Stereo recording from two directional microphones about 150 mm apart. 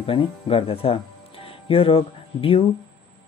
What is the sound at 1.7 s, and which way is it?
Music, 40° left (ahead or behind).